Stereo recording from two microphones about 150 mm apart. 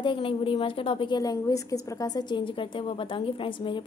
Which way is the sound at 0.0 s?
35° left (ahead or behind).